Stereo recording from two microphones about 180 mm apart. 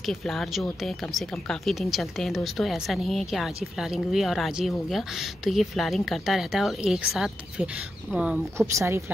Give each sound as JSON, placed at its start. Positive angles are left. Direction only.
{"t": 0.0, "sound": "speech", "side_deg": 0}